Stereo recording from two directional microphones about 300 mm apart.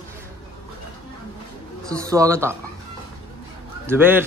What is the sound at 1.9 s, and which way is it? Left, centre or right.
Speech, centre.